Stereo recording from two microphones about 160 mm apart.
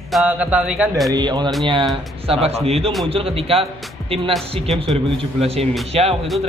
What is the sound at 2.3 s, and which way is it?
Mantra, 40° right (ahead or behind).